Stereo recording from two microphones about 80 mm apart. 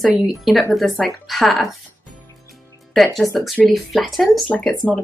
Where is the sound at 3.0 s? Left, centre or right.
Centre.